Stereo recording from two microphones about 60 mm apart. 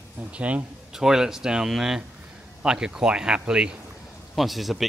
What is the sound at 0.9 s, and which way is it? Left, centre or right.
Speech, centre.